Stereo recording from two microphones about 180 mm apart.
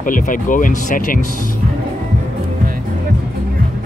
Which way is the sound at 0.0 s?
45° left (ahead or behind).